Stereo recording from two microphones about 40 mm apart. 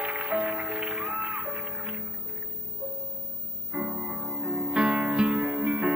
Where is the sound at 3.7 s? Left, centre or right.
Right.